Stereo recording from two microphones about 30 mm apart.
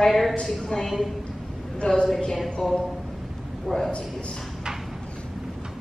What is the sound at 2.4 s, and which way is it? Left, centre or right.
Speech, centre.